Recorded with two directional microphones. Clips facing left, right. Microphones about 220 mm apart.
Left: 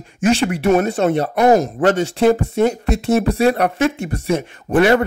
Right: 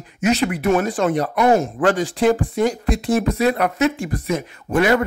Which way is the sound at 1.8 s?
25° left (ahead or behind).